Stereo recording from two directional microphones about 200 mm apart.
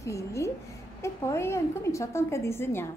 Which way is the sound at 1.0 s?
15° left (ahead or behind).